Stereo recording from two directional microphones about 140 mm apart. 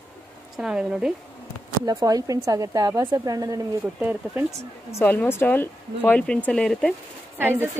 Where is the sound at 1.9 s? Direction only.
25° right (ahead or behind).